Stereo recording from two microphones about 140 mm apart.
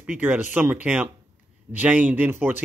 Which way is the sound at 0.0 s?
10° right (ahead or behind).